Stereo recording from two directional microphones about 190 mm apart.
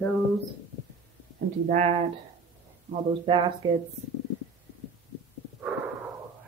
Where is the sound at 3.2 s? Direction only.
25° right (ahead or behind).